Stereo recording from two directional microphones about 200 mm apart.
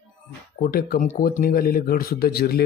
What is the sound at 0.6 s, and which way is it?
Speech, 45° left (ahead or behind).